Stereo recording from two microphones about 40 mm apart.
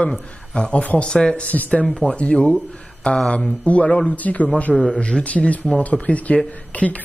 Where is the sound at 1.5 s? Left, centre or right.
Left.